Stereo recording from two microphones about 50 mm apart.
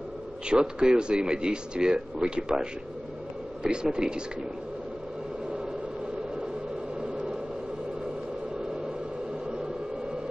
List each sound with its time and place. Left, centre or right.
0.5 s speech: centre
7.0 s vehicle: centre